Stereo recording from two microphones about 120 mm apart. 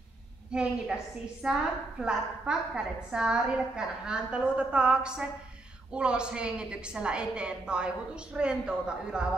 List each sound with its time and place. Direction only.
0.5 s a woman's voice: 5° right (ahead or behind)